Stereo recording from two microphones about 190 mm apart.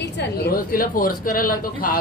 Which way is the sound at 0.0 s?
60° left (ahead or behind).